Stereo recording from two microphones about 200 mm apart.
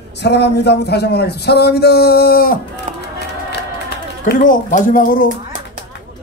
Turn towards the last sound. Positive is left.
turn(degrees=40)  # may be behind; listen again after turning